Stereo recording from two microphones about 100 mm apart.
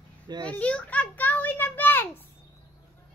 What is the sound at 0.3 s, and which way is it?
Speech, 45° right (ahead or behind).